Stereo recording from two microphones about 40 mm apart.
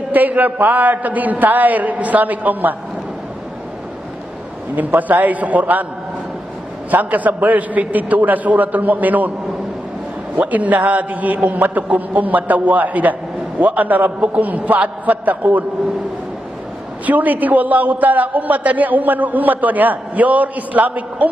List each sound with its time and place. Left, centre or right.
0.1 s a man's voice: right
4.7 s a man's voice: right
6.9 s a man's voice: right
10.3 s a man's voice: right
17.0 s a man's voice: right